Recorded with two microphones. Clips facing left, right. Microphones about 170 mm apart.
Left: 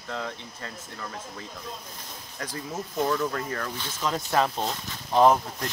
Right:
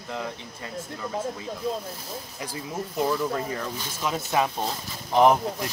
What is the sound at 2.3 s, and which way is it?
Speech, 10° right (ahead or behind).